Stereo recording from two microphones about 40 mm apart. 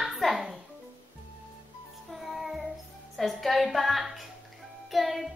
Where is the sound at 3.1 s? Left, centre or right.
Centre.